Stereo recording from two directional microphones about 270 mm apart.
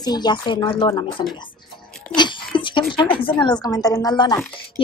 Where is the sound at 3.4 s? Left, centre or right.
Centre.